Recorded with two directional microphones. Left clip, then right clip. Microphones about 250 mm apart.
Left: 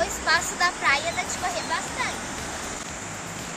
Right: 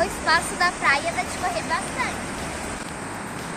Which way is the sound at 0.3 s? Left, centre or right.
Centre.